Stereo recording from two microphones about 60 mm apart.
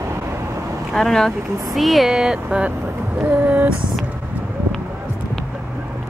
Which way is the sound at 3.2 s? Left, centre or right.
Right.